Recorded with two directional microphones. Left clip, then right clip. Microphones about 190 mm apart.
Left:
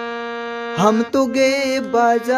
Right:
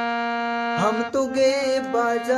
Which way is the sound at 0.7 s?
40° left (ahead or behind).